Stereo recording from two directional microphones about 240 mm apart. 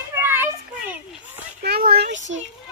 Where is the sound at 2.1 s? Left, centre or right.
Right.